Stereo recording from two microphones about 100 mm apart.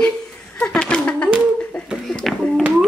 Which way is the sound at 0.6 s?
10° left (ahead or behind).